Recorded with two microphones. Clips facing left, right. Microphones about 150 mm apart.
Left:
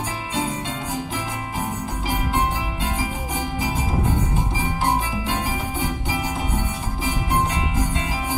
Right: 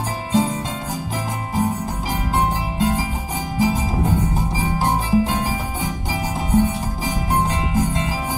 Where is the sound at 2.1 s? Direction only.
40° right (ahead or behind).